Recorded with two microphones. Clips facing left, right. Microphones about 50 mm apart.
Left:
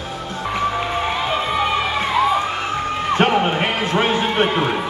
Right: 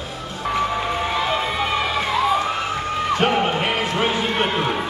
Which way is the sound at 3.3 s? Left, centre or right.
Left.